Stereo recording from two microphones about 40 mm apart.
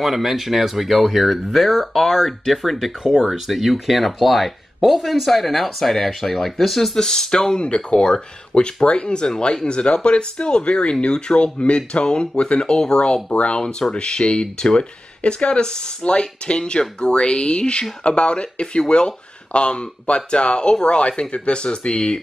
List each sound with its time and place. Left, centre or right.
0.0 s speech: centre
7.0 s speech: centre